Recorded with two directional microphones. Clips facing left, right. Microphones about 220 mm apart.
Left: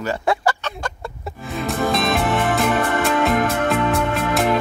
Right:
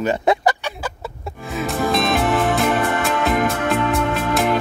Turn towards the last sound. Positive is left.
turn(degrees=0)  # may be behind; listen again after turning